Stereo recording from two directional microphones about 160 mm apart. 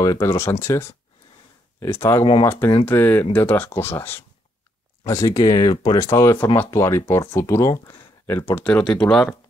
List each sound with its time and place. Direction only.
0.0 s speech: 20° left (ahead or behind); by 9.3 s 5° left (ahead or behind)